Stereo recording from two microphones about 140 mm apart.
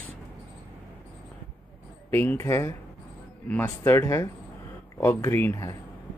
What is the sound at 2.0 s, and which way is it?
Speech, 15° left (ahead or behind).